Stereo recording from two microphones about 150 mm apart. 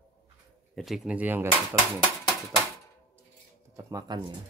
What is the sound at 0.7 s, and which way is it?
Speech, centre (ahead or behind).